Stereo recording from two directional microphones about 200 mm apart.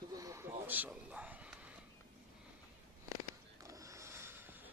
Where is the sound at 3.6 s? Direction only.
15° right (ahead or behind).